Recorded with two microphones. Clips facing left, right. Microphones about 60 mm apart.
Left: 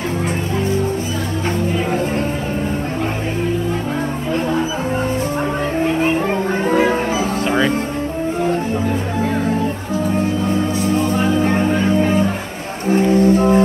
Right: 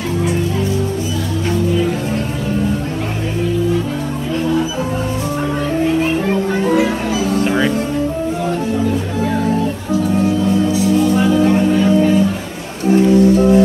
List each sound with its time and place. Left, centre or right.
6.5 s music: left
10.0 s music: left